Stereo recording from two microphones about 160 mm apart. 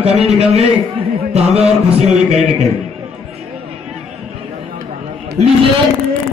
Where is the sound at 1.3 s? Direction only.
40° right (ahead or behind).